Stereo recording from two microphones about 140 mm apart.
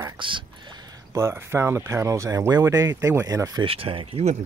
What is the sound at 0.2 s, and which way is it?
Speech, 35° right (ahead or behind).